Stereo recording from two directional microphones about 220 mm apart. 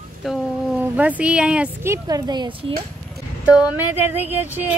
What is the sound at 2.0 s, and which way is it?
Speech, 15° right (ahead or behind).